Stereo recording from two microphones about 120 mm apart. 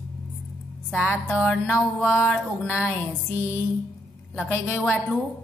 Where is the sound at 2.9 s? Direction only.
15° left (ahead or behind).